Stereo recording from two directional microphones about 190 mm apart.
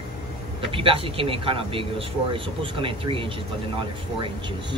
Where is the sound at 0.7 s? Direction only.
30° right (ahead or behind).